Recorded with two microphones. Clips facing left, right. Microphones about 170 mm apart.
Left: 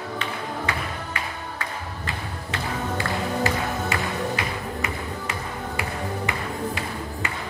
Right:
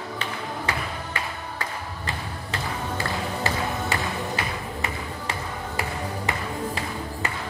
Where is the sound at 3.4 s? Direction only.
35° right (ahead or behind).